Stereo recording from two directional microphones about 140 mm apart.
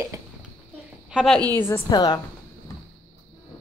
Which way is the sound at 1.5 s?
15° left (ahead or behind).